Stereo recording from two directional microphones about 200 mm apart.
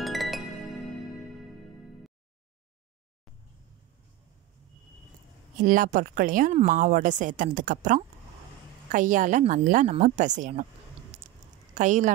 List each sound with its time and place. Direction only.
0.0 s music: centre (ahead or behind)
5.6 s speech: 40° right (ahead or behind)
11.7 s speech: 40° right (ahead or behind)